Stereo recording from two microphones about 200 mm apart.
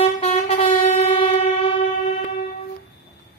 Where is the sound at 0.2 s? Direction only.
35° left (ahead or behind).